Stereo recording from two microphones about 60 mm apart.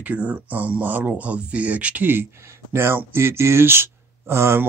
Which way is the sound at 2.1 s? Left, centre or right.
Right.